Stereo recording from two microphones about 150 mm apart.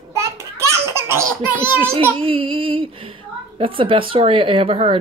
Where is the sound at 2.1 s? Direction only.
35° right (ahead or behind).